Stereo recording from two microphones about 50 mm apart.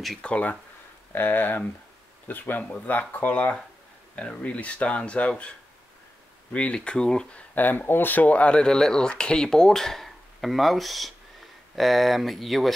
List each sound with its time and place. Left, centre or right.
0.2 s speech: centre
1.1 s speech: left
6.5 s speech: left
7.5 s speech: left; by 12.7 s centre